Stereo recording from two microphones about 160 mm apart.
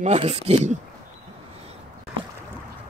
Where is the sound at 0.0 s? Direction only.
40° right (ahead or behind).